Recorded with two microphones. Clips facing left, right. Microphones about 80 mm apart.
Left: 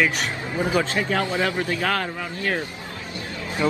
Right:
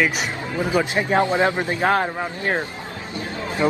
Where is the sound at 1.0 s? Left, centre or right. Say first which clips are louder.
Right 4 dB; right.